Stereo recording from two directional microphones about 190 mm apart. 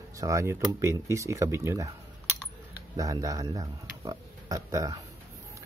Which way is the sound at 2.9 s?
20° right (ahead or behind).